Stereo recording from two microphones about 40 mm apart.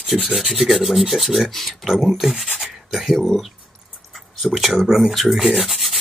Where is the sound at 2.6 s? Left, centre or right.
Centre.